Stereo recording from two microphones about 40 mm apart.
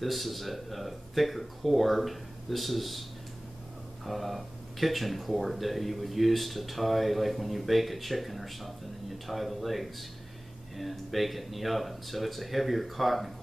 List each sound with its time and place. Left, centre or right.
0.0 s speech: centre